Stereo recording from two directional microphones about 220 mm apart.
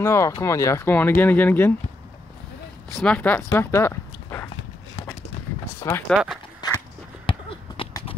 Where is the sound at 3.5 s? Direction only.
10° left (ahead or behind).